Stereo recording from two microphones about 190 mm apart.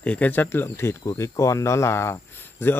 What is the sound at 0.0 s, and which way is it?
Speech, 10° left (ahead or behind).